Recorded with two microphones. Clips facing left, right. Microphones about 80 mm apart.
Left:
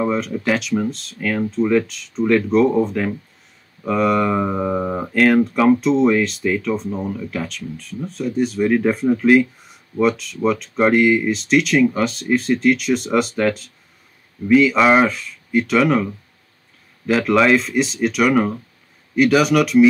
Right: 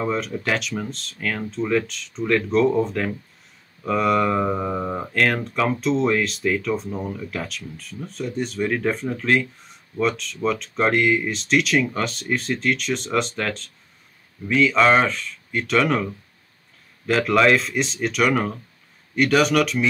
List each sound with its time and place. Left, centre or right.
0.0 s speech: centre